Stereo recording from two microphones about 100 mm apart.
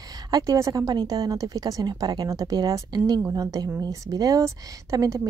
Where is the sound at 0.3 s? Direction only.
35° right (ahead or behind).